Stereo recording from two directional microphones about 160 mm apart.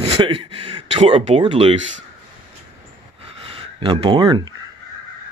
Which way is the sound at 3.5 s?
30° right (ahead or behind).